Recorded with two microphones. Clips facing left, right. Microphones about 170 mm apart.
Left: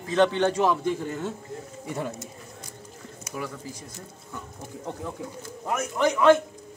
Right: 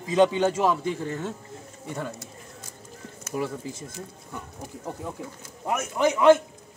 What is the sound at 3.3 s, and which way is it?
Speech, 25° right (ahead or behind).